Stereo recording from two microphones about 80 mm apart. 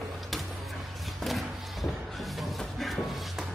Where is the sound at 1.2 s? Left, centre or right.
Centre.